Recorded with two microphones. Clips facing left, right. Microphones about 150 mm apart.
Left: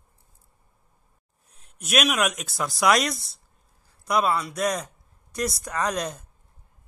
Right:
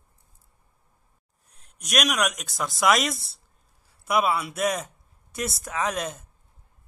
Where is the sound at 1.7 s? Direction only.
5° left (ahead or behind).